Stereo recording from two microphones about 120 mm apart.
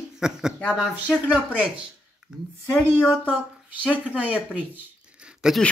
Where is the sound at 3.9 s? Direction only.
10° right (ahead or behind).